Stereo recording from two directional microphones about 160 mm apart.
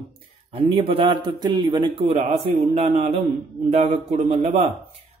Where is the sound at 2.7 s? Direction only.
40° right (ahead or behind).